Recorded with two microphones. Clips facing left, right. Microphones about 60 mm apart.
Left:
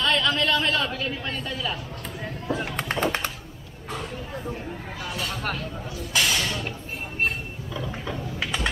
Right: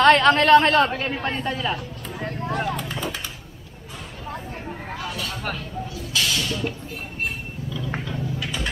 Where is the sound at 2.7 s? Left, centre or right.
Left.